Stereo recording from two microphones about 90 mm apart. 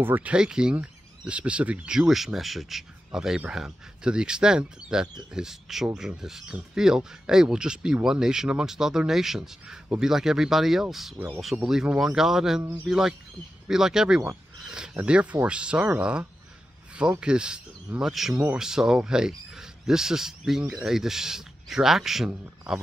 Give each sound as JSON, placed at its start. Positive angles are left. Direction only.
{"t": 0.0, "sound": "speech", "side_deg": -25}
{"t": 0.3, "sound": "speech", "side_deg": -10}
{"t": 11.1, "sound": "speech", "side_deg": -20}
{"t": 11.5, "sound": "speech", "side_deg": -5}